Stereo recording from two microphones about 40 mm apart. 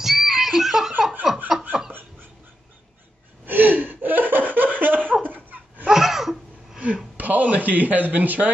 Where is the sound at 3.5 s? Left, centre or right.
Right.